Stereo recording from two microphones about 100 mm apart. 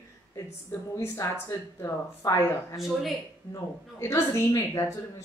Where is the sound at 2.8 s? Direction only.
Centre (ahead or behind).